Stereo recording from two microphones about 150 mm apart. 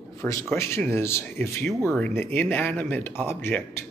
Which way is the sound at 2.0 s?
10° left (ahead or behind).